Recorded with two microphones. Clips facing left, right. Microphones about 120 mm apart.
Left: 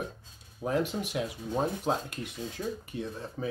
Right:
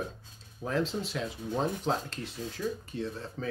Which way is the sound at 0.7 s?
15° left (ahead or behind).